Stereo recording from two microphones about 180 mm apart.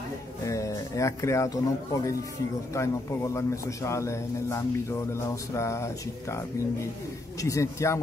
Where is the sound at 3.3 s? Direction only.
15° left (ahead or behind).